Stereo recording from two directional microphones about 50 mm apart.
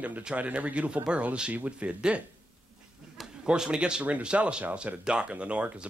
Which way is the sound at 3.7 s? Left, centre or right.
Centre.